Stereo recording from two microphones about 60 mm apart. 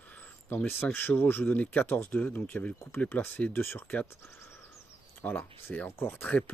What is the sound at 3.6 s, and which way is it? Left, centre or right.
Speech, left.